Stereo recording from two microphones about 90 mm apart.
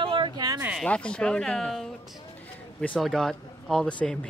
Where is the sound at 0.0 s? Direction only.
75° right (ahead or behind).